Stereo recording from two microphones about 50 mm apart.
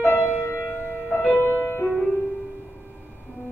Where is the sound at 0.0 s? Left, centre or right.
Left.